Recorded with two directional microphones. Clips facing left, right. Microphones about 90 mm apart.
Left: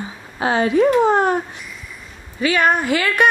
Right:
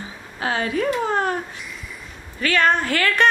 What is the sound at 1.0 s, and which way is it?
Speech, 20° left (ahead or behind).